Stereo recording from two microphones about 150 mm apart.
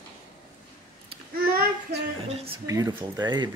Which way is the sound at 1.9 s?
40° right (ahead or behind).